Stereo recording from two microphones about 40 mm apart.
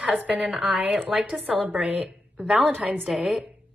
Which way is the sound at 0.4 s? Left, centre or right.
Centre.